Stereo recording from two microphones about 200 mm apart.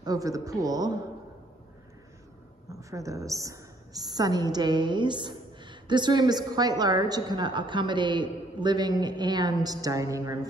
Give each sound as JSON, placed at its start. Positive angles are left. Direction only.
{"t": 0.0, "sound": "speech", "side_deg": -20}
{"t": 2.7, "sound": "a woman's voice", "side_deg": -15}